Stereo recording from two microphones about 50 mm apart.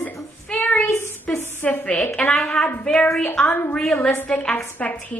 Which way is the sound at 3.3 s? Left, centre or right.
Left.